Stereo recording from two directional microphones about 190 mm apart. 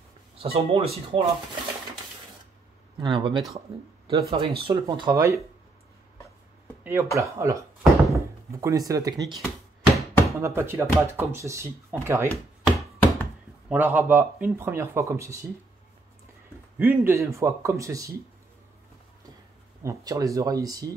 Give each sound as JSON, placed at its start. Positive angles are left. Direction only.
{"t": 0.4, "sound": "speech", "side_deg": -30}
{"t": 3.0, "sound": "speech", "side_deg": -25}
{"t": 6.8, "sound": "a sound", "side_deg": -10}
{"t": 7.2, "sound": "speech", "side_deg": -15}
{"t": 9.9, "sound": "knock", "side_deg": 15}
{"t": 10.4, "sound": "speech", "side_deg": -15}
{"t": 12.6, "sound": "chopping", "side_deg": 0}
{"t": 13.7, "sound": "speech", "side_deg": -10}
{"t": 16.7, "sound": "speech", "side_deg": -10}
{"t": 19.8, "sound": "speech", "side_deg": -15}